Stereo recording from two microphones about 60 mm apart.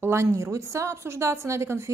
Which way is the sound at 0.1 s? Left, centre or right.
Right.